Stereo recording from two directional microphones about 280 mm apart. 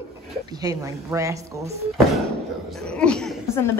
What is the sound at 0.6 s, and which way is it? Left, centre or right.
Speech, centre.